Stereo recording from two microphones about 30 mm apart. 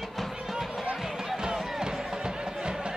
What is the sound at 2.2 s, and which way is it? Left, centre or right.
Music, right.